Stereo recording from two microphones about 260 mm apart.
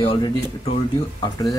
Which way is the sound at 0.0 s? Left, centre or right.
Left.